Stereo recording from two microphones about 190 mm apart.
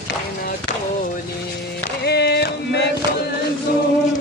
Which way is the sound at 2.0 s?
60° left (ahead or behind).